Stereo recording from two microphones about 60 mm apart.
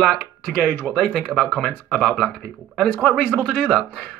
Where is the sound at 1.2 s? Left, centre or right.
Centre.